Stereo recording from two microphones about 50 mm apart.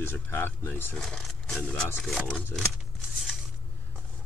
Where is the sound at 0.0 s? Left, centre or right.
Left.